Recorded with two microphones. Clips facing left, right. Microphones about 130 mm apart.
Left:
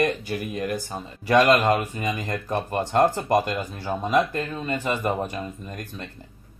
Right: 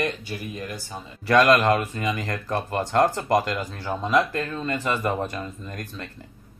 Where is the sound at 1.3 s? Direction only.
15° left (ahead or behind).